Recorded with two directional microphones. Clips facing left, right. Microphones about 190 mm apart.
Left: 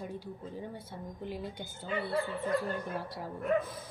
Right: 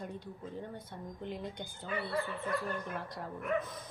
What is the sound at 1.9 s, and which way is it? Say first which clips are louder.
Speech: left 3 dB; 25° left (ahead or behind).